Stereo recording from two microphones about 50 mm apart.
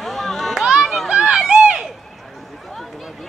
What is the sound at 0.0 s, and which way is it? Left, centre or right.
Children playing, centre.